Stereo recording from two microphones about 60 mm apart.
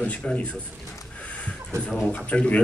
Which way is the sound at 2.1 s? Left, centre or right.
Left.